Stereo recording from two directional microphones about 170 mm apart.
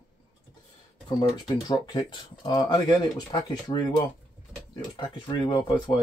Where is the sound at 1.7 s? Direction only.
25° left (ahead or behind).